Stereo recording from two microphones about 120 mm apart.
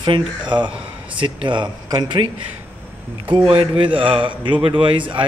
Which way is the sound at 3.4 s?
50° right (ahead or behind).